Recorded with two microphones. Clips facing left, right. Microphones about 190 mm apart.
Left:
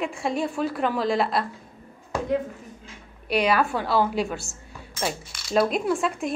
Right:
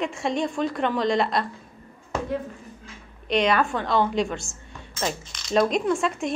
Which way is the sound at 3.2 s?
5° left (ahead or behind).